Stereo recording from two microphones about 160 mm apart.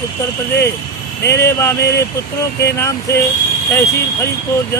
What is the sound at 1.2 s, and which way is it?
Speech, 15° left (ahead or behind).